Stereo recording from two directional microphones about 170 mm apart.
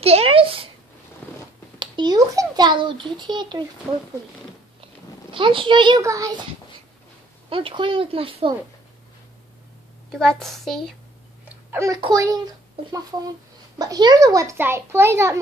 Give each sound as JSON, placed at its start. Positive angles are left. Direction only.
{"t": 0.0, "sound": "a sound", "side_deg": -35}
{"t": 1.2, "sound": "a sound", "side_deg": 10}
{"t": 1.8, "sound": "a child's voice", "side_deg": -25}
{"t": 3.9, "sound": "a child's voice", "side_deg": 0}
{"t": 5.3, "sound": "a child's voice", "side_deg": -30}
{"t": 7.4, "sound": "speech", "side_deg": -30}
{"t": 10.1, "sound": "a child's voice", "side_deg": 5}
{"t": 11.4, "sound": "babbling", "side_deg": -15}
{"t": 12.0, "sound": "a child's voice", "side_deg": -20}
{"t": 13.7, "sound": "a child's voice", "side_deg": -20}